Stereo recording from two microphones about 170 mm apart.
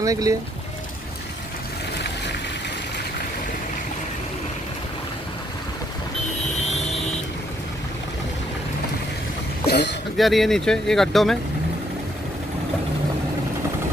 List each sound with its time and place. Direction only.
0.0 s speech: 20° right (ahead or behind)
9.7 s a sound: 90° left
10.1 s speech: centre (ahead or behind)